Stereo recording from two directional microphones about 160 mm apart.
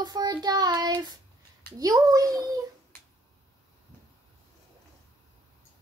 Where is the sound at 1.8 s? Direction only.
20° right (ahead or behind).